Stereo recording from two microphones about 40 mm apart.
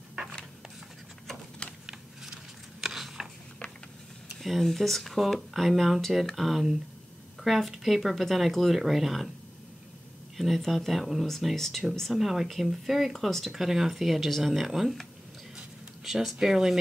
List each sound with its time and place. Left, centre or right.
0.1 s a sound: centre
1.9 s a sound: centre
4.4 s speech: centre
10.3 s speech: centre
10.6 s speech: centre
10.9 s speech: centre
11.5 s speech: centre
12.1 s speech: centre
13.1 s speech: centre
16.0 s speech: centre